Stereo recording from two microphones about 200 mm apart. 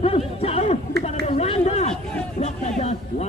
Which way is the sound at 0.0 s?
30° left (ahead or behind).